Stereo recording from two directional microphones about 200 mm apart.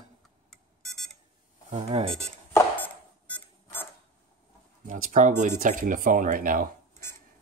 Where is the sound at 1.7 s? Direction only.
30° right (ahead or behind).